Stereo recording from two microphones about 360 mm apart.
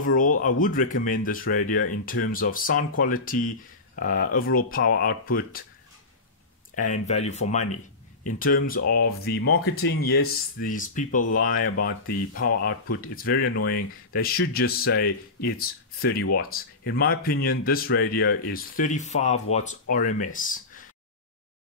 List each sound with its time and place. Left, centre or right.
0.0 s speech: left
6.7 s speech: left